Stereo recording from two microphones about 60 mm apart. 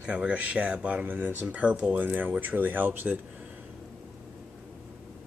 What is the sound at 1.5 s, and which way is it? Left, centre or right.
Speech, right.